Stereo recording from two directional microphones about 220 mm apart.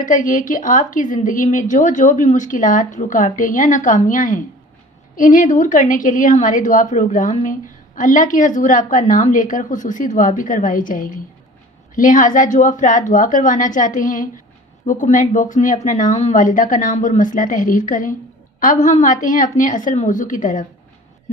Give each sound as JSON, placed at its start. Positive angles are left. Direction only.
{"t": 0.0, "sound": "a woman's voice", "side_deg": 35}